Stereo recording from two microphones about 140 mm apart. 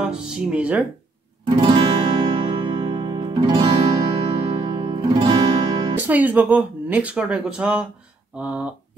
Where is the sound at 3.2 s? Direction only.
35° right (ahead or behind).